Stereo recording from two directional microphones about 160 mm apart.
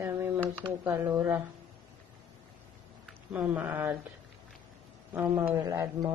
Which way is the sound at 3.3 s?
10° right (ahead or behind).